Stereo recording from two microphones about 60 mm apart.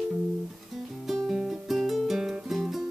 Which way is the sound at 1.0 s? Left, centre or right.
Centre.